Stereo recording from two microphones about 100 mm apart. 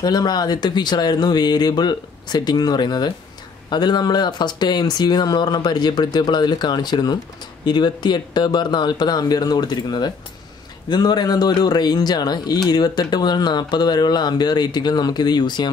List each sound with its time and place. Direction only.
0.0 s speech: 40° left (ahead or behind)